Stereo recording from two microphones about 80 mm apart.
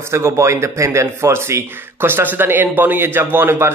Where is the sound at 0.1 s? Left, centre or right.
Right.